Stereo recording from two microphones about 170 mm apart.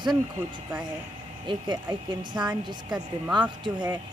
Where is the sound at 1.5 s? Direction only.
25° right (ahead or behind).